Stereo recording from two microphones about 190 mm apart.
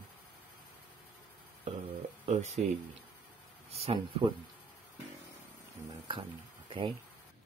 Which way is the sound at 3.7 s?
30° right (ahead or behind).